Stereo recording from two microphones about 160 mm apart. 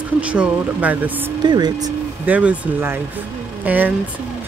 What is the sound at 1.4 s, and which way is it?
Speech, 25° right (ahead or behind).